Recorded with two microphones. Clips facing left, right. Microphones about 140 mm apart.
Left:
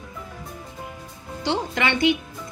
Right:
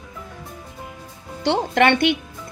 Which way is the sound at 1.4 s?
60° right (ahead or behind).